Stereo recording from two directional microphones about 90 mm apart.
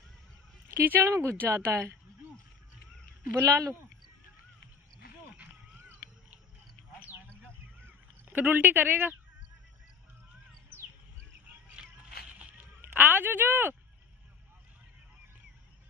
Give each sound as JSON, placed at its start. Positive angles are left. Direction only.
{"t": 0.7, "sound": "speech", "side_deg": -25}
{"t": 1.0, "sound": "speech", "side_deg": -35}
{"t": 1.4, "sound": "speech", "side_deg": -25}
{"t": 3.3, "sound": "speech", "side_deg": -35}
{"t": 7.4, "sound": "a sound", "side_deg": -20}
{"t": 11.4, "sound": "a sound", "side_deg": -10}